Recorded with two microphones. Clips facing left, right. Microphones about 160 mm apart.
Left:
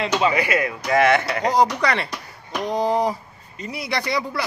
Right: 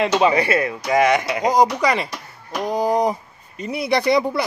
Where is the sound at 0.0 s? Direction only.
25° right (ahead or behind).